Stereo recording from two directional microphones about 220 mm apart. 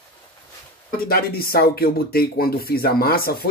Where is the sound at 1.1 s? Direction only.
45° left (ahead or behind).